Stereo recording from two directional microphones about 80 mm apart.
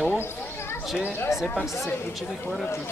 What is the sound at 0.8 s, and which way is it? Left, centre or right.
Speech, centre.